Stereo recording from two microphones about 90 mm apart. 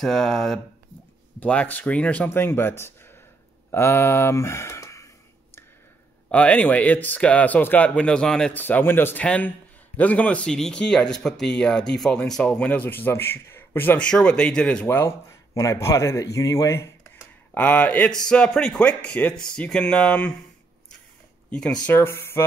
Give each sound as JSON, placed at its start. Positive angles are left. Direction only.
{"t": 0.0, "sound": "speech", "side_deg": 5}
{"t": 1.4, "sound": "speech", "side_deg": 15}
{"t": 2.2, "sound": "speech", "side_deg": 25}
{"t": 6.3, "sound": "speech", "side_deg": 15}
{"t": 8.5, "sound": "speech", "side_deg": 20}
{"t": 9.2, "sound": "speech", "side_deg": 15}
{"t": 14.0, "sound": "speech", "side_deg": 10}
{"t": 14.9, "sound": "speech", "side_deg": 30}
{"t": 17.6, "sound": "speech", "side_deg": 15}
{"t": 21.5, "sound": "speech", "side_deg": 10}
{"t": 21.9, "sound": "speech", "side_deg": 25}